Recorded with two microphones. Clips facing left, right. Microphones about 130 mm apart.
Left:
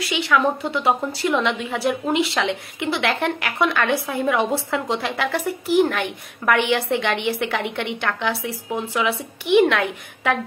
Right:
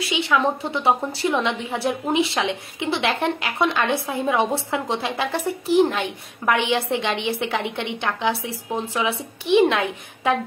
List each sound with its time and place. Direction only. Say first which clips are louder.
0.1 s a woman's voice: left 1 dB; 20° right (ahead or behind)
9.6 s a woman's voice: left 1 dB; 20° right (ahead or behind)